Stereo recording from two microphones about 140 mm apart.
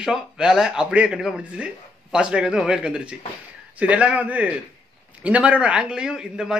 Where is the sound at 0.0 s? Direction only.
5° right (ahead or behind).